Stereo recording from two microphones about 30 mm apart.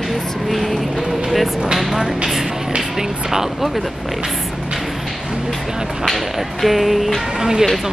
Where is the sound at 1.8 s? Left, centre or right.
Centre.